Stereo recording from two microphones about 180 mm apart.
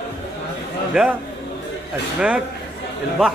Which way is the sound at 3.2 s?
5° right (ahead or behind).